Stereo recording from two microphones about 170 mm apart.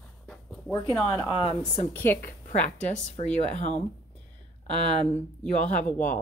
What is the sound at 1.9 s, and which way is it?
Speech, 10° left (ahead or behind).